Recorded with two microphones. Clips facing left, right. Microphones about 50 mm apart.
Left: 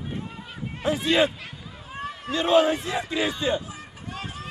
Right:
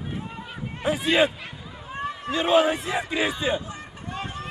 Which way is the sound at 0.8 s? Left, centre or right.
Right.